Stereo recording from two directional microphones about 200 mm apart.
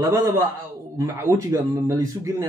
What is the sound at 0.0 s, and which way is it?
A man's voice, 20° right (ahead or behind).